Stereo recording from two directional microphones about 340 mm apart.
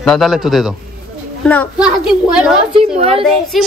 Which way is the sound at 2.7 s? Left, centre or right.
Centre.